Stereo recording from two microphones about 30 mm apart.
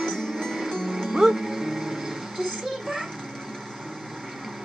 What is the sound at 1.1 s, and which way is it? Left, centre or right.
Music, centre.